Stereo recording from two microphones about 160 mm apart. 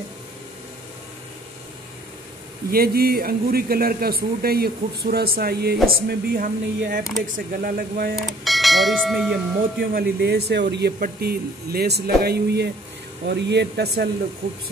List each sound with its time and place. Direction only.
2.7 s a man's voice: 70° right (ahead or behind)
6.0 s a man's voice: 65° right (ahead or behind)
8.2 s speech: centre (ahead or behind)
9.8 s speech: 90° right